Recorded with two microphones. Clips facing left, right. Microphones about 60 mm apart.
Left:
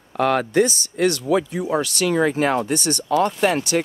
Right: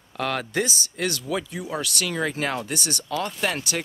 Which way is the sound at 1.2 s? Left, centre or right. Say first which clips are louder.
Left 8 dB; centre.